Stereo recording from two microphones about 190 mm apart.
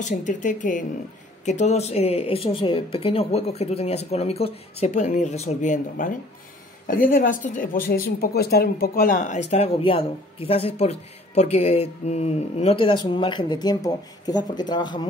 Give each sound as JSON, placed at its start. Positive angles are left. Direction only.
{"t": 0.0, "sound": "a woman's voice", "side_deg": 40}